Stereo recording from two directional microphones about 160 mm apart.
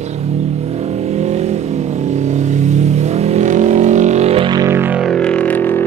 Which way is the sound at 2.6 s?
45° right (ahead or behind).